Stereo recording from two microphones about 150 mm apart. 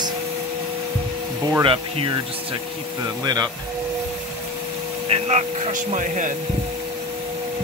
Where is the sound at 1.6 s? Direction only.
35° right (ahead or behind).